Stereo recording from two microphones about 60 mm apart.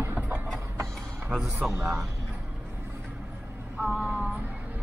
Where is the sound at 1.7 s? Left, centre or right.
Right.